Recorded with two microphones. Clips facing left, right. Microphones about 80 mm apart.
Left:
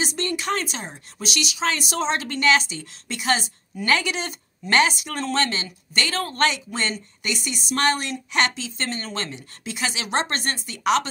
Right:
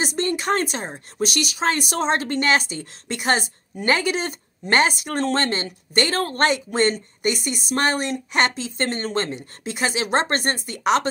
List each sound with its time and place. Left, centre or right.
0.0 s speech: right